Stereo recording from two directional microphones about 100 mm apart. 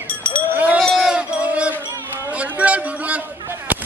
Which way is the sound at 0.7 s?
Centre (ahead or behind).